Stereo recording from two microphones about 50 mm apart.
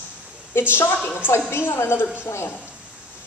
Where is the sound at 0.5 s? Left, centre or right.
Left.